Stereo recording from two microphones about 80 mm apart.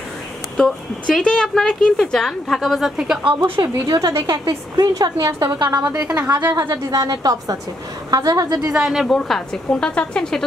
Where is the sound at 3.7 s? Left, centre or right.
Right.